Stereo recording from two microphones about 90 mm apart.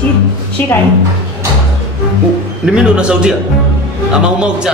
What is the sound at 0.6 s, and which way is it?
Speech, 20° left (ahead or behind).